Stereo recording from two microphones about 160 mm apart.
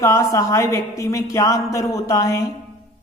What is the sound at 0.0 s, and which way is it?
A woman's voice, 20° left (ahead or behind).